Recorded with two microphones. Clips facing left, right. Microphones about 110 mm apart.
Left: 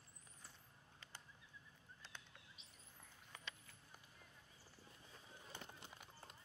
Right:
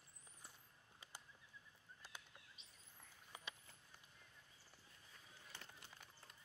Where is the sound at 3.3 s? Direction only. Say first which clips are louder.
Even; 15° right (ahead or behind).